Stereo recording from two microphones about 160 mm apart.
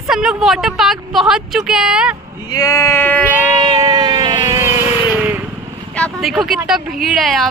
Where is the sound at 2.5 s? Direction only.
20° left (ahead or behind).